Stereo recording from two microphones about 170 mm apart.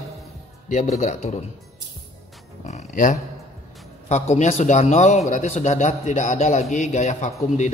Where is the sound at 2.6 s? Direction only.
45° left (ahead or behind).